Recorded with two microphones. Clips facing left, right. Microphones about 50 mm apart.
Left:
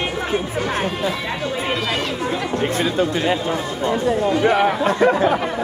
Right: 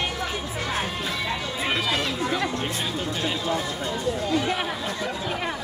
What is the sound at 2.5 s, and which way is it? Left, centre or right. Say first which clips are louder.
Chatter: left 8 dB; left.